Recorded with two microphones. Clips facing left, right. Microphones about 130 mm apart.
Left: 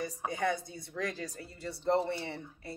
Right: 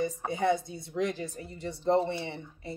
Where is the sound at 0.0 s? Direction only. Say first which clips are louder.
Right 4 dB; 25° right (ahead or behind).